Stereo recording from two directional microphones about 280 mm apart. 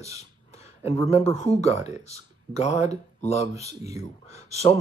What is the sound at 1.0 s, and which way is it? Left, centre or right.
Speech, left.